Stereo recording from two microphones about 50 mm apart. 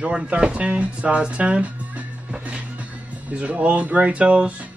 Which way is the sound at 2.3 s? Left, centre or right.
Right.